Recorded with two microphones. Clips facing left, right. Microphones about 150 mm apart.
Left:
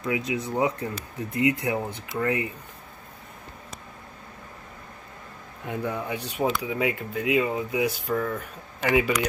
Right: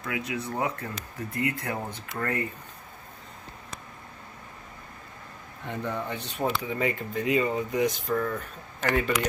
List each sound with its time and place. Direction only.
0.0 s speech: 20° left (ahead or behind)
5.7 s speech: 10° left (ahead or behind)